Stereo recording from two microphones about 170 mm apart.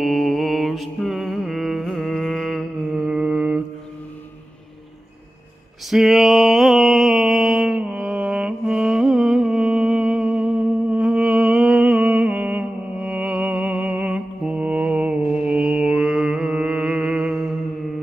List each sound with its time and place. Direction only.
0.0 s mantra: centre (ahead or behind)
5.9 s mantra: centre (ahead or behind)